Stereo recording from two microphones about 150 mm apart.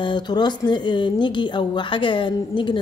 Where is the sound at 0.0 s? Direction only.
30° left (ahead or behind).